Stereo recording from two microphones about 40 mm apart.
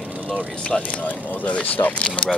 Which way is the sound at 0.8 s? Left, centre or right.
Left.